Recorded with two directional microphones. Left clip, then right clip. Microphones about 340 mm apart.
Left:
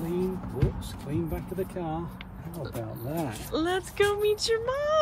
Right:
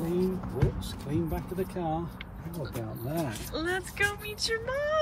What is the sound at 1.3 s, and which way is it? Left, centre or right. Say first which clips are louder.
Speech: left 1 dB; centre.